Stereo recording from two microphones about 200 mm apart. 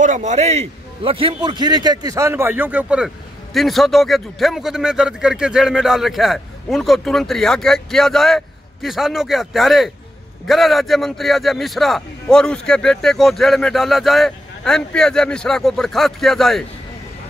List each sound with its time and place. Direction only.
0.0 s a man's voice: 35° right (ahead or behind); by 16.6 s centre (ahead or behind)